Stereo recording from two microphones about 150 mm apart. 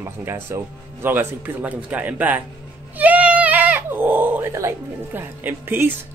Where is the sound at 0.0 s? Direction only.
15° right (ahead or behind).